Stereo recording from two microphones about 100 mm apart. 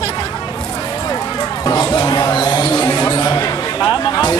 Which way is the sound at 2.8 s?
25° left (ahead or behind).